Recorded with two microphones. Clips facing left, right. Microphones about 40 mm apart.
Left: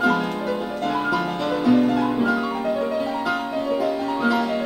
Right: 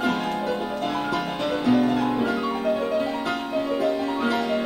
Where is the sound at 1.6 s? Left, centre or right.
Centre.